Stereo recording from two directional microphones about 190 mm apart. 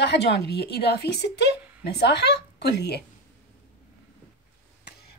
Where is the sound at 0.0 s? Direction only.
60° left (ahead or behind).